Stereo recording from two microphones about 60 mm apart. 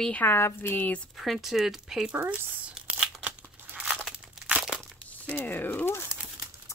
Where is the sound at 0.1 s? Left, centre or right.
Left.